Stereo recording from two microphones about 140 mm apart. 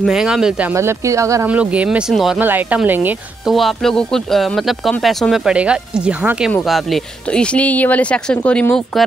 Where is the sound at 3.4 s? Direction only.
Centre (ahead or behind).